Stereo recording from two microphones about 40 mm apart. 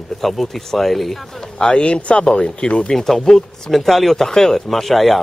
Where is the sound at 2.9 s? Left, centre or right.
Centre.